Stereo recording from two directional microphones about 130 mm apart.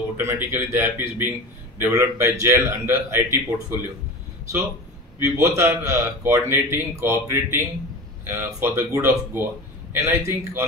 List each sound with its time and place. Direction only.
0.2 s a man's voice: 15° right (ahead or behind)
5.2 s a man's voice: 20° right (ahead or behind)